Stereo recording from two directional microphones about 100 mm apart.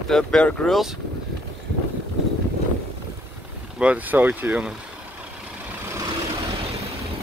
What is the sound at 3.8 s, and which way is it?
Speech, 15° right (ahead or behind).